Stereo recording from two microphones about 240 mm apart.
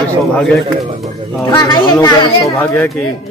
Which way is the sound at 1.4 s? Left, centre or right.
Centre.